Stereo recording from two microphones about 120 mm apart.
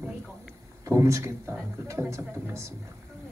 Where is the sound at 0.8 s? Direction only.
25° right (ahead or behind).